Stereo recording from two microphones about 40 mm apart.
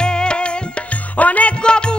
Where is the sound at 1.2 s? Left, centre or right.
Left.